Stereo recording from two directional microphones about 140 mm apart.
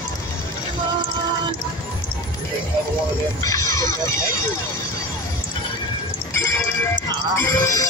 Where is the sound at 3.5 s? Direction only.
25° left (ahead or behind).